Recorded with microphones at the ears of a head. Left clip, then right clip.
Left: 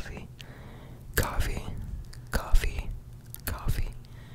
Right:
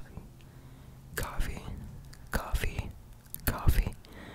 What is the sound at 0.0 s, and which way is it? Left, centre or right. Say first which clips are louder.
Whispering: left 10 dB; left.